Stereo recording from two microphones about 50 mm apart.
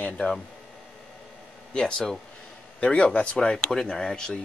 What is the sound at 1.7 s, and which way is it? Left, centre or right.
A man's voice, centre.